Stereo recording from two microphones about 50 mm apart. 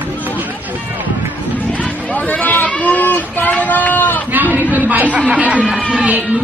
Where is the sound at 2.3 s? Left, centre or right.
Left.